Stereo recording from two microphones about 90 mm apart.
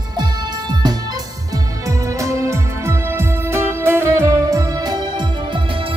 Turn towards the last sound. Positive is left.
turn(degrees=-75)  # may be behind; listen again after turning